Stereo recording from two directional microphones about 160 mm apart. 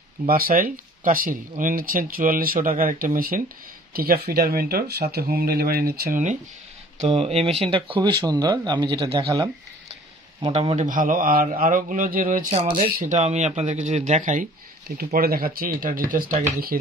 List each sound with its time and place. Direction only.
0.3 s speech: 65° right (ahead or behind)
7.0 s speech: 40° right (ahead or behind)
8.0 s speech: 25° right (ahead or behind)
10.4 s speech: 35° right (ahead or behind)
10.9 s speech: 55° right (ahead or behind)
15.1 s speech: 70° right (ahead or behind)